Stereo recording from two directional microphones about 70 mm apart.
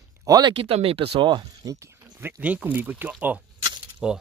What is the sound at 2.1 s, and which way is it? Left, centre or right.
Speech, right.